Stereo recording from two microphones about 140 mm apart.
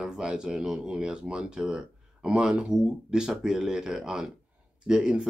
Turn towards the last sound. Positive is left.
turn(degrees=-5)  # may be behind; listen again after turning